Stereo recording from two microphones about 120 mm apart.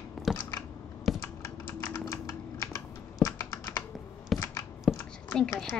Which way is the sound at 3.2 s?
30° left (ahead or behind).